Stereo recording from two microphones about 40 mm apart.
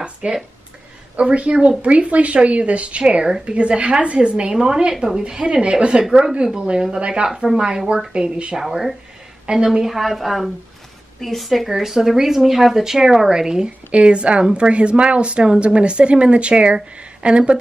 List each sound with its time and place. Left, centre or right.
0.0 s a sound: right
1.3 s a woman's voice: right
8.5 s a woman's voice: centre; by 17.6 s right